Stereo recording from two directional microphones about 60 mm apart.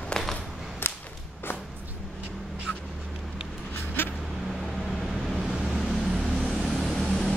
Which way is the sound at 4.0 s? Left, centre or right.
Left.